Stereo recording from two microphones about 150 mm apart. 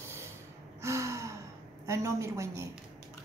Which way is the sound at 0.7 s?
20° right (ahead or behind).